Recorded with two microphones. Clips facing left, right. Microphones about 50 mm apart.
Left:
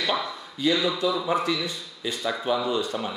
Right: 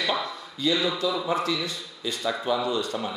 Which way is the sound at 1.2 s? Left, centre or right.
Centre.